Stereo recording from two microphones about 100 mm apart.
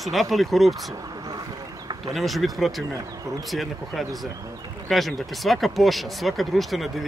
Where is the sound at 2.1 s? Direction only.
Centre (ahead or behind).